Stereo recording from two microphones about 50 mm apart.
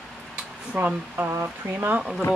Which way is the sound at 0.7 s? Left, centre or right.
Right.